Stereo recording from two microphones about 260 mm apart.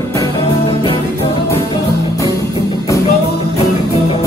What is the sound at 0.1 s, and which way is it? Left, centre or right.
Music, centre.